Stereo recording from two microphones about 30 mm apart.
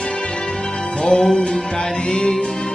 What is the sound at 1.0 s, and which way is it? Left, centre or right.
Music, centre.